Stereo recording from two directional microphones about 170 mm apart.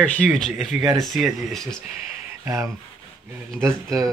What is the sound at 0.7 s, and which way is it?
Speech, 20° right (ahead or behind).